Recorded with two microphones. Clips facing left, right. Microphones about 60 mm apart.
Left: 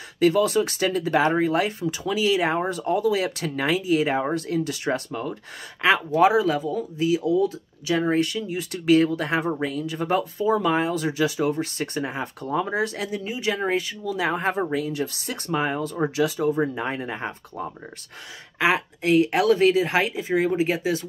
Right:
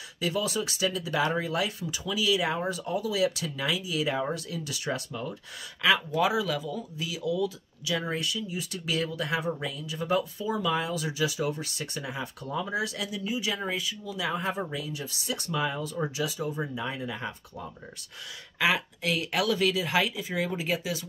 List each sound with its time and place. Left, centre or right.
0.2 s speech: left
15.4 s speech: left